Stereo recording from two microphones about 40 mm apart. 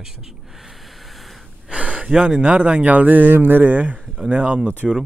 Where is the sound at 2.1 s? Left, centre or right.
Right.